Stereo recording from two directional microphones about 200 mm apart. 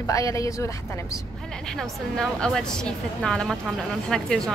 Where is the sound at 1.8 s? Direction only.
Centre (ahead or behind).